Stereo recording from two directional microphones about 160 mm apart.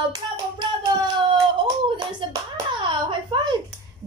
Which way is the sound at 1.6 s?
30° right (ahead or behind).